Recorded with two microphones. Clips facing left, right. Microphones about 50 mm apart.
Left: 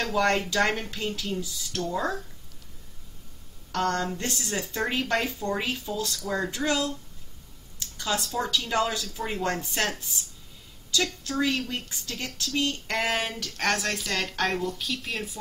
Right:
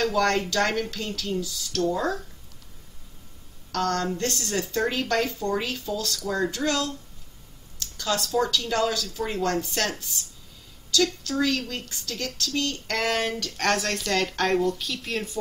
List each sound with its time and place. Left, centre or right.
0.0 s speech: centre
3.8 s speech: centre
6.2 s speech: centre
6.5 s a woman's voice: centre